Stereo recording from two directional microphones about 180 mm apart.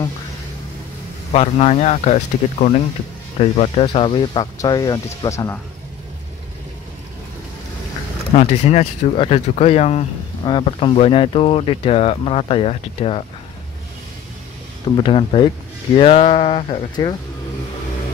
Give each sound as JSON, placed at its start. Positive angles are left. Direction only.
{"t": 1.3, "sound": "speech", "side_deg": 35}
{"t": 8.3, "sound": "speech", "side_deg": 35}
{"t": 15.0, "sound": "speech", "side_deg": 30}